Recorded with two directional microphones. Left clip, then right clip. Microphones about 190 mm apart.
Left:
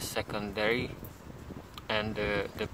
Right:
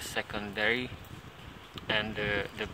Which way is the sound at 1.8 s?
45° left (ahead or behind).